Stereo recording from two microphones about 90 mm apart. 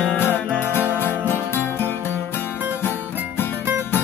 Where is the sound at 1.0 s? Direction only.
25° left (ahead or behind).